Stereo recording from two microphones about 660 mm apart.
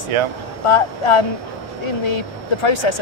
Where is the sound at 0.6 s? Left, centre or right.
Left.